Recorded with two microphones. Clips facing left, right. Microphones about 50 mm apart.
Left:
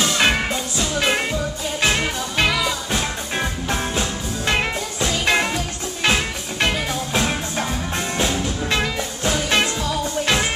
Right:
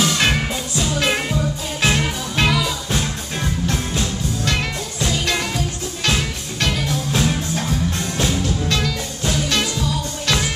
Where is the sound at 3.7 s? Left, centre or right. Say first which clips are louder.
Even; left.